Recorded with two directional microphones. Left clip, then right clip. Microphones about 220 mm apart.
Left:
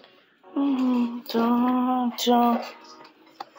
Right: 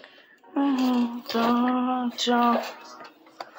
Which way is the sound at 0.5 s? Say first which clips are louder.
Even; 15° left (ahead or behind).